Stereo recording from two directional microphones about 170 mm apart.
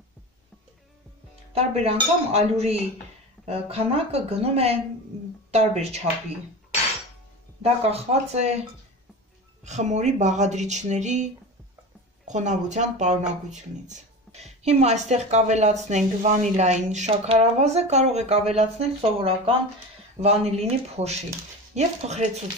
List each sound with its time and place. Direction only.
1.5 s speech: 40° right (ahead or behind)
7.6 s speech: 40° right (ahead or behind)
9.7 s speech: 45° right (ahead or behind)
12.3 s speech: 45° right (ahead or behind)